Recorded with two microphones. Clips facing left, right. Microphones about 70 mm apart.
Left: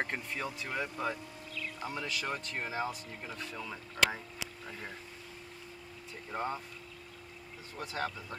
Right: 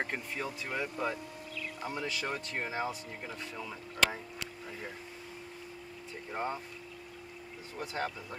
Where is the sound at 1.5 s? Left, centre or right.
Centre.